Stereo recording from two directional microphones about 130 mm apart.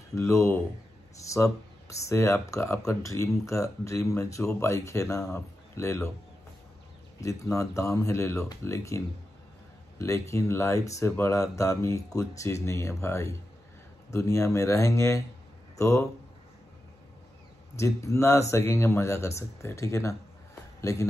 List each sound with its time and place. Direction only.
0.1 s speech: 20° left (ahead or behind)
7.2 s speech: 25° left (ahead or behind)
17.7 s speech: 20° left (ahead or behind)